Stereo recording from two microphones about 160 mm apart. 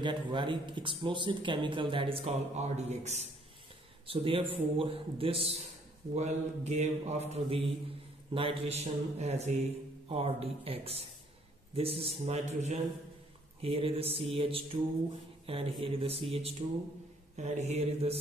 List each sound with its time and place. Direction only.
0.0 s a man's voice: 30° right (ahead or behind); by 3.3 s 45° right (ahead or behind)
4.1 s a man's voice: 35° right (ahead or behind)